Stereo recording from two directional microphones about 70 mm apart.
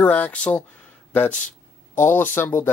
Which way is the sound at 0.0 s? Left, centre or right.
Left.